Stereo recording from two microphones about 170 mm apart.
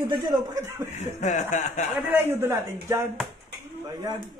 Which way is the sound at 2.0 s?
10° right (ahead or behind).